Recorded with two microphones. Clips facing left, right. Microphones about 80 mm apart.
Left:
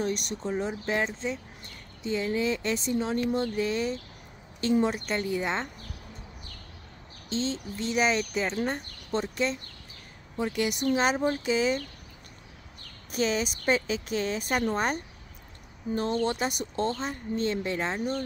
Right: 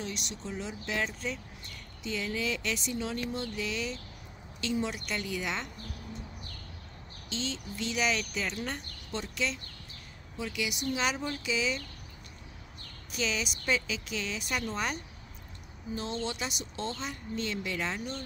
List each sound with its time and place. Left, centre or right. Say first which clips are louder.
0.0 s a woman's voice: left 8 dB; left
7.2 s a woman's voice: left 6 dB; left
13.1 s a woman's voice: left 6 dB; left